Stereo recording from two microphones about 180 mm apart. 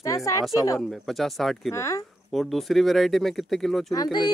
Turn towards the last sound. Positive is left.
turn(degrees=20)  # may be behind; listen again after turning